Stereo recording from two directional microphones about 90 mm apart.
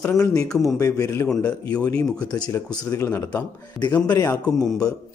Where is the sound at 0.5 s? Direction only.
5° left (ahead or behind).